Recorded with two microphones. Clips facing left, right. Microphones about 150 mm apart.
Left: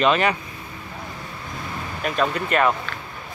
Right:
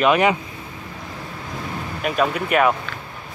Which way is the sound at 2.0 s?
5° right (ahead or behind).